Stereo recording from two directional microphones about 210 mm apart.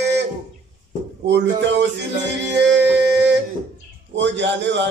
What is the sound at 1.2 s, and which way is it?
Music, 55° right (ahead or behind).